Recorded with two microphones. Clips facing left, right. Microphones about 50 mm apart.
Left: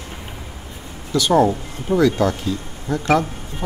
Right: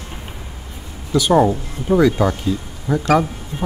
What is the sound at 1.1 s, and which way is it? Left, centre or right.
Speech, centre.